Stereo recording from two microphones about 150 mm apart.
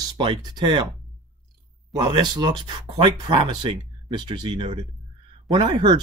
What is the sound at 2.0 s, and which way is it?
Speech, 30° right (ahead or behind).